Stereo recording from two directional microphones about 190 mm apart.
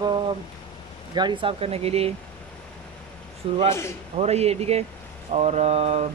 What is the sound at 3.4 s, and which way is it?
Speech, 30° right (ahead or behind).